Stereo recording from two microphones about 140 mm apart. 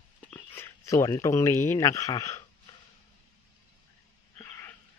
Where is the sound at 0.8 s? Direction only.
25° left (ahead or behind).